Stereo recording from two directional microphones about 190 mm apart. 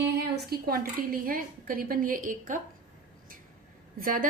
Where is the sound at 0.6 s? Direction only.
50° right (ahead or behind).